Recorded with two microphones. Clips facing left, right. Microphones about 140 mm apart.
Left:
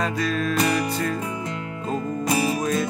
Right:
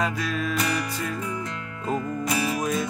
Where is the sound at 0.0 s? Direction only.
10° right (ahead or behind).